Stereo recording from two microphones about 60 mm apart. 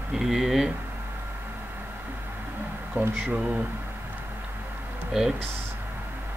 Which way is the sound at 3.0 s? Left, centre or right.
Right.